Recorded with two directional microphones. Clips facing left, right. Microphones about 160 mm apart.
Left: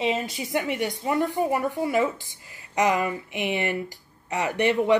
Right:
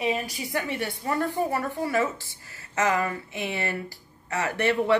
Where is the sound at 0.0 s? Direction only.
20° left (ahead or behind).